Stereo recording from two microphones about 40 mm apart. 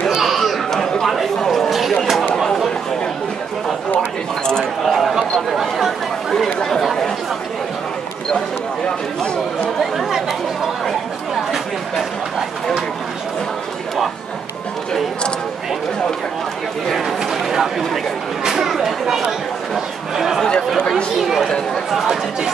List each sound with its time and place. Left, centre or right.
0.1 s chatter: centre
0.7 s chatter: centre
2.3 s chatter: centre
4.8 s a sound: centre
5.5 s chatter: centre
6.3 s speech: centre
6.8 s chatter: centre
9.8 s chatter: centre
16.9 s a sound: centre
18.5 s chatter: centre